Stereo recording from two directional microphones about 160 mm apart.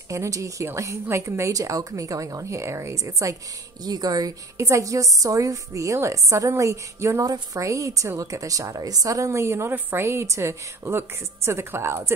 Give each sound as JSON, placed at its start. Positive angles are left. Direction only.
{"t": 0.1, "sound": "a woman's voice", "side_deg": -20}